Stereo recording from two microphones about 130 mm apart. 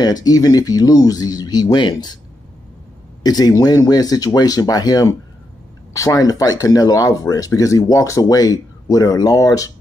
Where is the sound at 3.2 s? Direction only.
30° left (ahead or behind).